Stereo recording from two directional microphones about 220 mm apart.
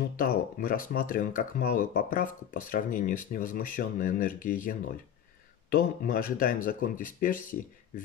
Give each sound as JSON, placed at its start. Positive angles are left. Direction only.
{"t": 0.1, "sound": "speech", "side_deg": 40}